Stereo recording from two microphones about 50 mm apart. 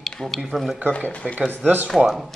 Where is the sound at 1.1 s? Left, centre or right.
Left.